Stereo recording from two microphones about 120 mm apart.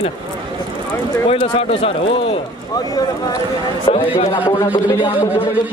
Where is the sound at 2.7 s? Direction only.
30° left (ahead or behind).